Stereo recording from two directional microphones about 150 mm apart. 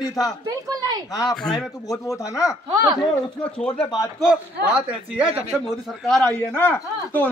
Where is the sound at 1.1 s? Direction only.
25° left (ahead or behind).